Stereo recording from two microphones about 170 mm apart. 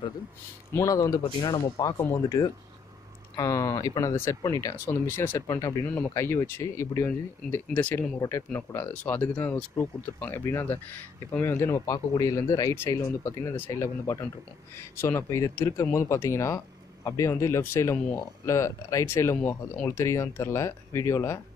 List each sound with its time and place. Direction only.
0.7 s speech: 20° left (ahead or behind)